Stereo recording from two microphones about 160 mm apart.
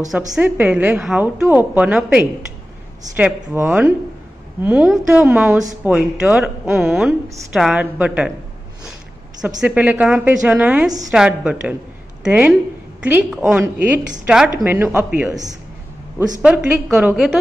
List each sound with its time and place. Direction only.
0.4 s a woman's voice: 10° right (ahead or behind)
5.5 s a man's voice: 20° right (ahead or behind)
5.9 s a woman's voice: 5° right (ahead or behind)
9.6 s a woman's voice: 10° right (ahead or behind)
15.2 s a man's voice: 25° right (ahead or behind)
16.4 s speech: 10° right (ahead or behind)